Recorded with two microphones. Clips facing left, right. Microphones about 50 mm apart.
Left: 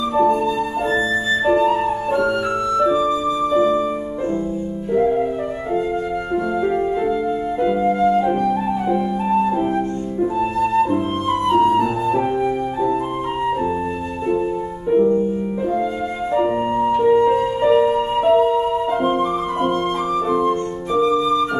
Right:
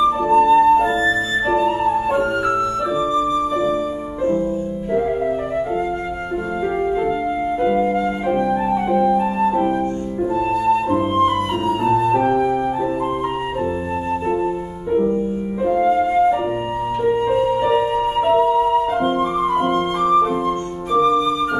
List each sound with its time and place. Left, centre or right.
0.3 s flute: right
2.8 s flute: centre
7.6 s flute: centre
11.7 s flute: centre
12.2 s flute: centre
17.3 s music: centre
20.1 s flute: centre